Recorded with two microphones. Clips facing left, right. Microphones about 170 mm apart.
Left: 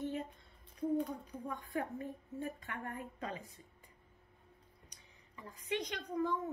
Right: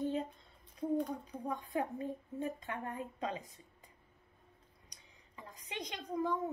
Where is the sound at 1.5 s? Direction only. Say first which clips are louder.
Right 3 dB; 20° right (ahead or behind).